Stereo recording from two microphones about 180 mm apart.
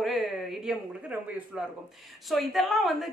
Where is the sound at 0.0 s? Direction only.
Centre (ahead or behind).